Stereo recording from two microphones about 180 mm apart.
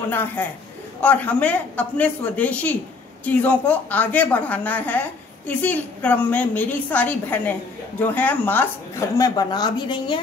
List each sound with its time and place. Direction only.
0.1 s a woman's voice: 10° left (ahead or behind)
9.1 s a woman's voice: 20° left (ahead or behind)